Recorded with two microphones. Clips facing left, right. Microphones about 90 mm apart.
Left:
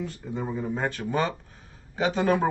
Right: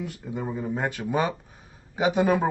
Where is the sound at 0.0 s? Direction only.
10° right (ahead or behind).